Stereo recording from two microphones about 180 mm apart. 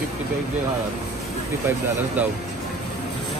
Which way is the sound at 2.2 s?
10° right (ahead or behind).